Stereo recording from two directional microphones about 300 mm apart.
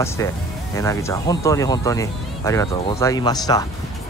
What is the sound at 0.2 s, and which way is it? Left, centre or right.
Speech, centre.